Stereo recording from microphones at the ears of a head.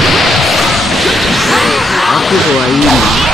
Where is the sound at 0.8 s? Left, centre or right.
Centre.